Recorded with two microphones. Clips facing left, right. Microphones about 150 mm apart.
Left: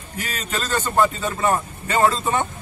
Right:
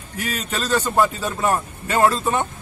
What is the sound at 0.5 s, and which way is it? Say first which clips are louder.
A man's voice: right 2 dB; 10° right (ahead or behind).